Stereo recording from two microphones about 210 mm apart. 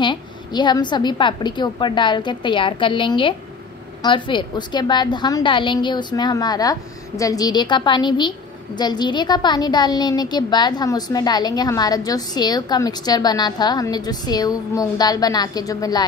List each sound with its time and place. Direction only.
0.0 s a woman's voice: 20° left (ahead or behind)